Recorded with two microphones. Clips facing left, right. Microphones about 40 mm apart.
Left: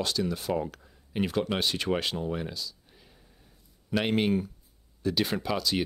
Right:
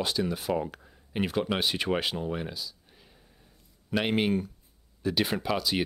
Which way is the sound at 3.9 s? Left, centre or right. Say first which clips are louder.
Even; centre.